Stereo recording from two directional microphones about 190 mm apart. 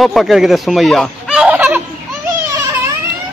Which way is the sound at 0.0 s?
Centre (ahead or behind).